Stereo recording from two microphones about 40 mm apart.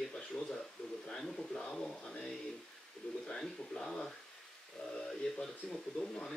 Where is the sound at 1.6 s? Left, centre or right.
Left.